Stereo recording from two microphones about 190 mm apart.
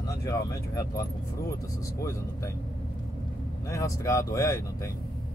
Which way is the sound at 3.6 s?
15° left (ahead or behind).